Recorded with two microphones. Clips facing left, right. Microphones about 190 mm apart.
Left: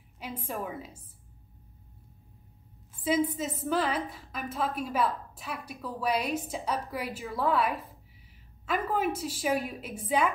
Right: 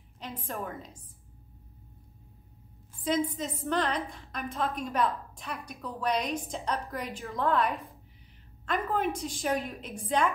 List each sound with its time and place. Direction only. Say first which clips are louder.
0.2 s a woman's voice: left 1 dB; 10° left (ahead or behind)
3.0 s a woman's voice: left 2 dB; 5° left (ahead or behind)